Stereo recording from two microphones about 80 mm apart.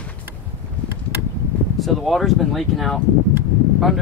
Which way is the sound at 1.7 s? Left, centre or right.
Centre.